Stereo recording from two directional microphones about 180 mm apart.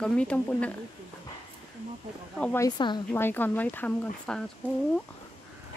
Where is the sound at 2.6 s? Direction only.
25° left (ahead or behind).